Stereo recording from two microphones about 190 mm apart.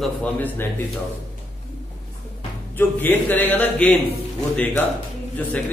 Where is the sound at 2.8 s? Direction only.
10° left (ahead or behind).